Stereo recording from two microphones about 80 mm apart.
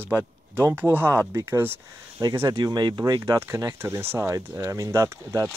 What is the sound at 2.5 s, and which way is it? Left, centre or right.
Speech, right.